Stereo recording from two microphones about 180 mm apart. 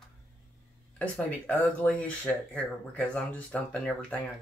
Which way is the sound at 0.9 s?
10° left (ahead or behind).